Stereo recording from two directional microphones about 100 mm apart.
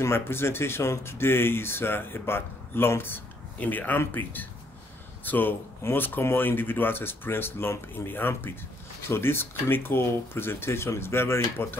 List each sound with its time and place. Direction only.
0.0 s speech: 25° left (ahead or behind)